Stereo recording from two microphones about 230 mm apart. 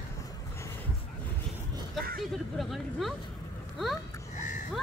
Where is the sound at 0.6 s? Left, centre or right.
Centre.